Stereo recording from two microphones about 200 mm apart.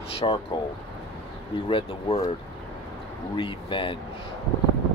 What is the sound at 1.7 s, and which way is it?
Speech, 25° left (ahead or behind).